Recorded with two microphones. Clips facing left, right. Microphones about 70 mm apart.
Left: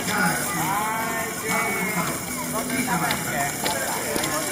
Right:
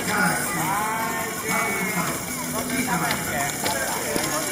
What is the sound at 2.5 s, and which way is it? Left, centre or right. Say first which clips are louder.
Vehicle: even; centre.